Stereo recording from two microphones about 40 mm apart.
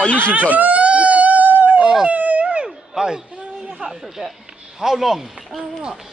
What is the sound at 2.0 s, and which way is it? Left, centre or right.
Wail, right.